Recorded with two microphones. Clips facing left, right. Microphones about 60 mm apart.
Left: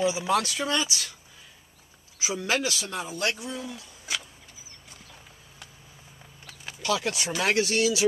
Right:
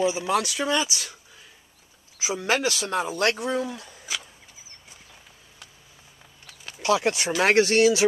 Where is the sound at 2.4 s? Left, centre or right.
Right.